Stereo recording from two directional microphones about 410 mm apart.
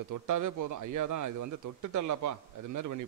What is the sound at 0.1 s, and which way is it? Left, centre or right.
A man's voice, right.